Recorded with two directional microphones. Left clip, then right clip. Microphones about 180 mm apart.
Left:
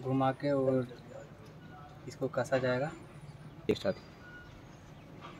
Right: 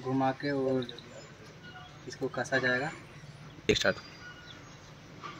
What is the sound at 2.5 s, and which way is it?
Speech, 25° left (ahead or behind).